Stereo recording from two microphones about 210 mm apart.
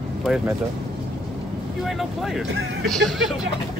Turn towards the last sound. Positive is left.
turn(degrees=0)  # may be behind; listen again after turning